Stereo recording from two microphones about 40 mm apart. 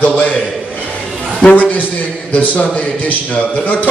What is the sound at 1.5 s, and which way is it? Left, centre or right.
A man's voice, left.